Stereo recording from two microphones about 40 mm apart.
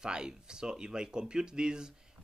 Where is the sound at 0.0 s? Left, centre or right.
Centre.